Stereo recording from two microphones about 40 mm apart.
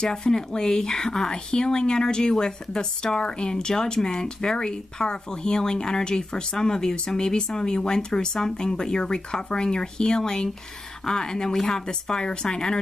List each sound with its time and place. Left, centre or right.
0.0 s a woman's voice: centre